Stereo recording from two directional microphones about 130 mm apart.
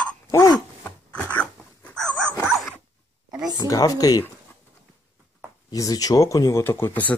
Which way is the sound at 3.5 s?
30° left (ahead or behind).